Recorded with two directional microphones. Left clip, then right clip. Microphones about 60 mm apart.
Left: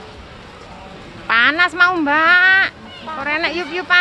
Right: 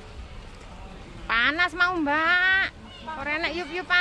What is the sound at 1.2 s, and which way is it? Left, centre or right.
Speech, right.